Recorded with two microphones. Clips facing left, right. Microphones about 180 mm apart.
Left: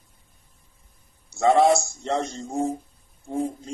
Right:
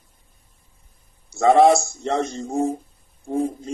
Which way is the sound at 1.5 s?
60° right (ahead or behind).